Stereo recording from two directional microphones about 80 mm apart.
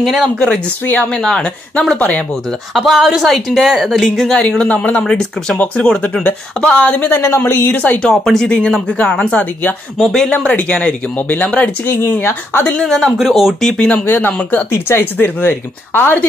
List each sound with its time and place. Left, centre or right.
0.0 s speech: centre
0.8 s a woman's voice: centre
2.7 s a woman's voice: centre
7.1 s speech: left
8.0 s a woman's voice: centre
11.9 s speech: left
12.7 s speech: centre
14.0 s speech: left